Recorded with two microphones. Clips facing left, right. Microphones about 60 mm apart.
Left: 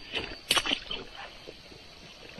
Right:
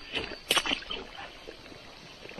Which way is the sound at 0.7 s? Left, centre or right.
Right.